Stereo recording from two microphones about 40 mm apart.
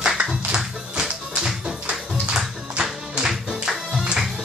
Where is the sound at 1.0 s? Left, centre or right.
Right.